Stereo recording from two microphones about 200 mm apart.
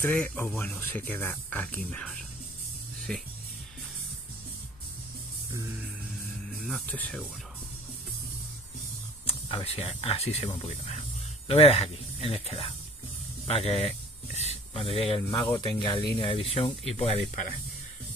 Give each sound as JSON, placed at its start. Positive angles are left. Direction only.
{"t": 0.0, "sound": "speech", "side_deg": 10}
{"t": 6.6, "sound": "speech", "side_deg": 5}
{"t": 9.2, "sound": "speech", "side_deg": 25}